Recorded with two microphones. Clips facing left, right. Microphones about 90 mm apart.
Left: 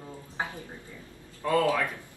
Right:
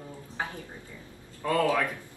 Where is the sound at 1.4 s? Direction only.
Centre (ahead or behind).